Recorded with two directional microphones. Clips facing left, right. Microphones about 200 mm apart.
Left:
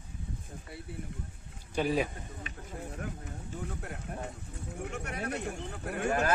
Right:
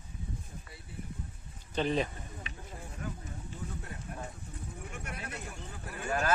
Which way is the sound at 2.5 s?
50° left (ahead or behind).